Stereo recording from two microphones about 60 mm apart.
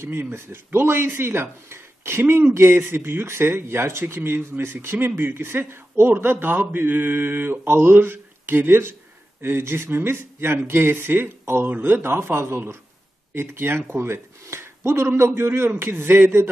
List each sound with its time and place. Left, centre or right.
0.0 s speech: right